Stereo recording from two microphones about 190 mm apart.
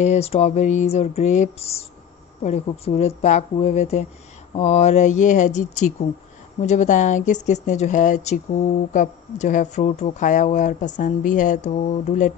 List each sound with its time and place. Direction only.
0.0 s speech: 35° left (ahead or behind)